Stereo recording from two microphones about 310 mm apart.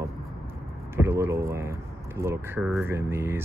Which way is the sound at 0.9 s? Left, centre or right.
Centre.